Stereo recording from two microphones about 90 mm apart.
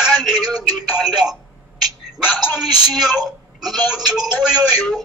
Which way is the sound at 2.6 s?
5° right (ahead or behind).